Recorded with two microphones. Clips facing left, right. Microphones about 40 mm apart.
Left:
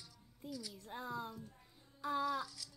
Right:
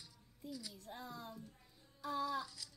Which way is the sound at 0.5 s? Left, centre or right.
Centre.